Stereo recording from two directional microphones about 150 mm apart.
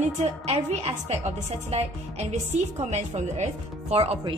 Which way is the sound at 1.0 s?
45° right (ahead or behind).